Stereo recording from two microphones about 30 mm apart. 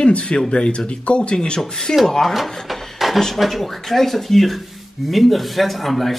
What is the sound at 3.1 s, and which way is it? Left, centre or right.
A man's voice, centre.